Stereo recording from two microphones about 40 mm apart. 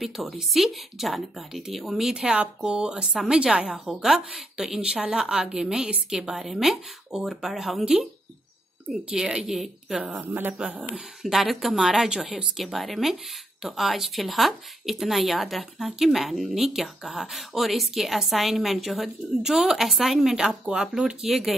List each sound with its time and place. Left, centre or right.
0.0 s speech: centre
2.2 s speech: right
3.9 s speech: centre
4.9 s speech: centre
10.2 s speech: right
11.2 s speech: centre